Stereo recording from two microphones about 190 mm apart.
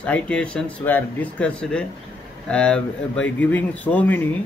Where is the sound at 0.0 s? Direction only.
5° left (ahead or behind).